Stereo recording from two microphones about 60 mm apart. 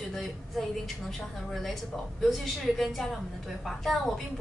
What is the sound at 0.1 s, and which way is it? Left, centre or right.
A woman's voice, centre.